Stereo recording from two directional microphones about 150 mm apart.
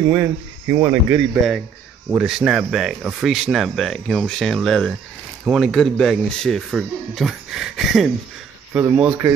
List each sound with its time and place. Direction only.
0.1 s speech: 20° right (ahead or behind)
2.0 s speech: 5° right (ahead or behind)